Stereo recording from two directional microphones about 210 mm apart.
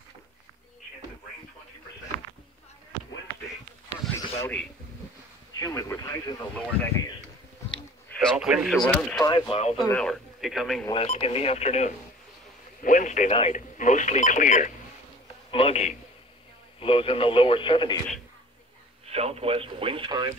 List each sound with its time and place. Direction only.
4.4 s speech: 5° left (ahead or behind)
8.4 s speech: centre (ahead or behind)
9.2 s speech: 20° left (ahead or behind)
9.8 s speech: 5° left (ahead or behind)
10.9 s speech: 30° left (ahead or behind)
19.0 s speech: 30° right (ahead or behind)